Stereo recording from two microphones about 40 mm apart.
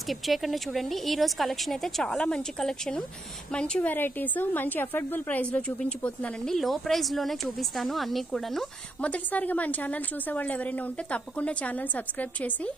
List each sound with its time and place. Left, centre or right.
0.1 s a woman's voice: centre
3.5 s a woman's voice: left
3.8 s a woman's voice: left
5.4 s a woman's voice: left
6.6 s a woman's voice: centre
9.0 s a woman's voice: left